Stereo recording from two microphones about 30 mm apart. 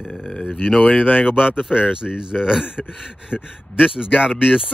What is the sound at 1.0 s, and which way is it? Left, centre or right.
Speech, centre.